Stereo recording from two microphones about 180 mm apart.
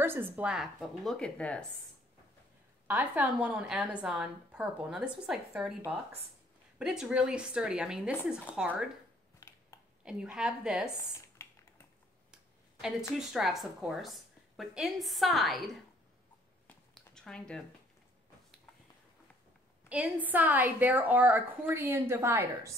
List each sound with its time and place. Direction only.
0.0 s a woman's voice: 10° right (ahead or behind); by 1.7 s 5° left (ahead or behind)
2.9 s a woman's voice: 5° right (ahead or behind)
6.8 s a woman's voice: 5° right (ahead or behind)
9.4 s a sound: 20° left (ahead or behind)
10.0 s a woman's voice: 5° right (ahead or behind)
13.3 s a woman's voice: centre (ahead or behind)
16.6 s a sound: 5° left (ahead or behind)
19.9 s a woman's voice: 10° right (ahead or behind)